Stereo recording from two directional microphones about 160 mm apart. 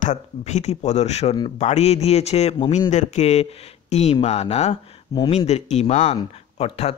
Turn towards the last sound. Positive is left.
turn(degrees=40)  # may be behind; listen again after turning